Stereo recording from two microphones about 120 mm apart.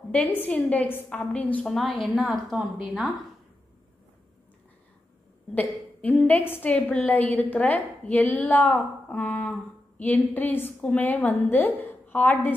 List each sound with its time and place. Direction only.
0.4 s a woman's voice: 10° left (ahead or behind)
1.7 s speech: centre (ahead or behind)
5.5 s a woman's voice: 15° left (ahead or behind)